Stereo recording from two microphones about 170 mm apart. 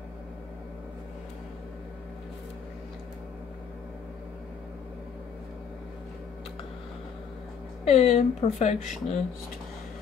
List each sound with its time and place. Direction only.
7.9 s speech: 40° left (ahead or behind)